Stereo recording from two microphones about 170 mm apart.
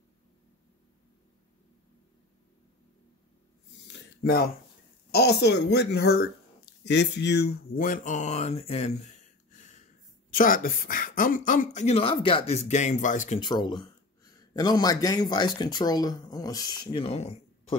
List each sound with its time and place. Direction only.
3.8 s a sound: 65° left (ahead or behind)
5.1 s speech: 70° left (ahead or behind)
6.8 s speech: 85° left; by 13.4 s 45° left (ahead or behind)
13.4 s speech: 25° left (ahead or behind)